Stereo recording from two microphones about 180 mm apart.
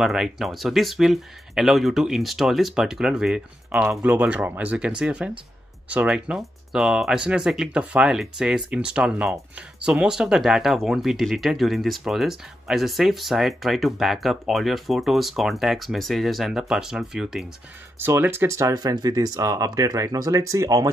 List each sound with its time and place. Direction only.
0.0 s speech: centre (ahead or behind); by 20.9 s 20° right (ahead or behind)